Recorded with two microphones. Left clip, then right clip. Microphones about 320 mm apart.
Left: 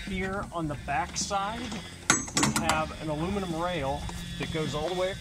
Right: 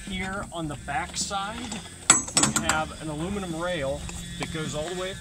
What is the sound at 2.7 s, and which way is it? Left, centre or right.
Speech, centre.